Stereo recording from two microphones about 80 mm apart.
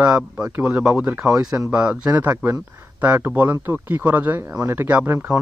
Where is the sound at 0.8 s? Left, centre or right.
Centre.